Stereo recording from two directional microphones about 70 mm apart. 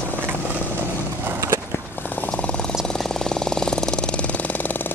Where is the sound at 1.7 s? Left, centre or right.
Left.